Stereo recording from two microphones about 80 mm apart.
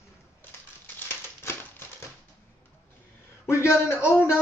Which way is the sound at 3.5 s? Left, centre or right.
Left.